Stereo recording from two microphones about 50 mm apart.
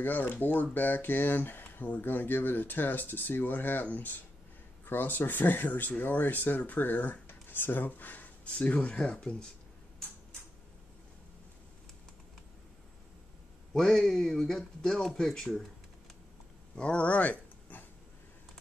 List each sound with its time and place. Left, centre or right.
0.0 s speech: left
13.7 s speech: centre
16.7 s a sound: left